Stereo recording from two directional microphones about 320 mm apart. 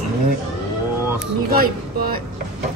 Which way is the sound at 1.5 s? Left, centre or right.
Right.